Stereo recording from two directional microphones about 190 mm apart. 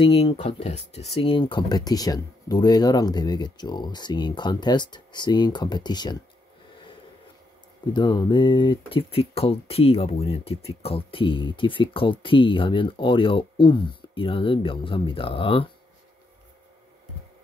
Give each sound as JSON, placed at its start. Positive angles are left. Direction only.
{"t": 0.0, "sound": "speech", "side_deg": 30}
{"t": 7.8, "sound": "speech", "side_deg": 25}